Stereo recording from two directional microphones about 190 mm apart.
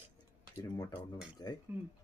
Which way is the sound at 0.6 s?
25° left (ahead or behind).